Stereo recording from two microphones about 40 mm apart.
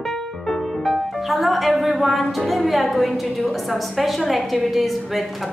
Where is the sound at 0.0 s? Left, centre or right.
Centre.